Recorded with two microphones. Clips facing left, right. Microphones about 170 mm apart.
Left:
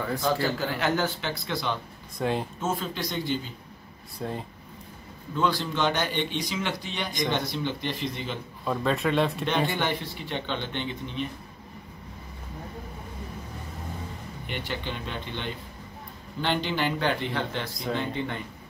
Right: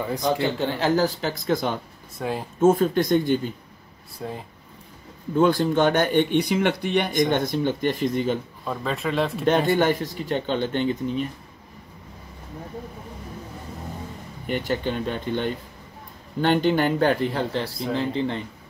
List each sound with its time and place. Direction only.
0.0 s speech: 20° right (ahead or behind); by 1.8 s 45° right (ahead or behind)
2.1 s speech: 5° right (ahead or behind)
2.6 s speech: 50° right (ahead or behind)
4.2 s speech: centre (ahead or behind)
5.3 s speech: 50° right (ahead or behind)
8.6 s speech: centre (ahead or behind)
9.5 s speech: 45° right (ahead or behind)
14.4 s speech: 45° right (ahead or behind)